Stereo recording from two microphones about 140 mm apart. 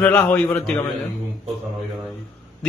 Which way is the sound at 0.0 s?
15° left (ahead or behind).